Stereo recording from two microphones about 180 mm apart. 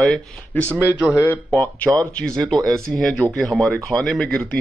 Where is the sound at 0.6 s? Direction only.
10° right (ahead or behind).